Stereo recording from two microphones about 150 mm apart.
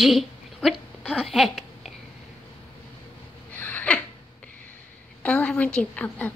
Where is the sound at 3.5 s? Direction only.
10° left (ahead or behind).